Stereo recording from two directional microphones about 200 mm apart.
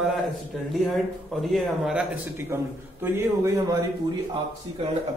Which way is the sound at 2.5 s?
15° right (ahead or behind).